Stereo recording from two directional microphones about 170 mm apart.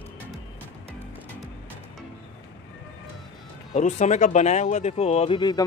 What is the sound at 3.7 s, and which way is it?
Speech, 45° left (ahead or behind).